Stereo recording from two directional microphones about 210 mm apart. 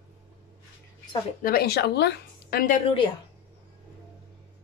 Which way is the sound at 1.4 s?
45° left (ahead or behind).